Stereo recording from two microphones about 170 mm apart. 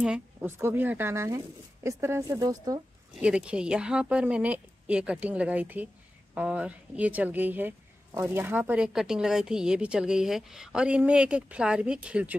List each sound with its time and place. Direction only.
0.0 s speech: 10° right (ahead or behind)
3.2 s speech: 5° right (ahead or behind)